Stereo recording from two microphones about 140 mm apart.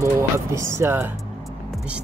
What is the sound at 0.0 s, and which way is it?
Speech, 20° right (ahead or behind).